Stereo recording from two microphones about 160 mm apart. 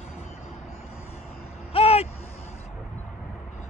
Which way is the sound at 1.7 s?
40° left (ahead or behind).